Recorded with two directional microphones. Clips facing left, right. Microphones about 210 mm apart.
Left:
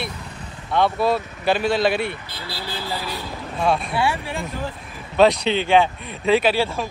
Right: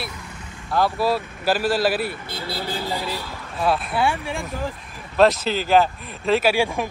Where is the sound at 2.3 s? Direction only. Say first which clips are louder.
Right 4 dB; 45° right (ahead or behind).